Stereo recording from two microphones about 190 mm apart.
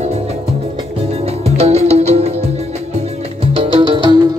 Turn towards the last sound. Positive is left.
turn(degrees=-25)  # may be behind; listen again after turning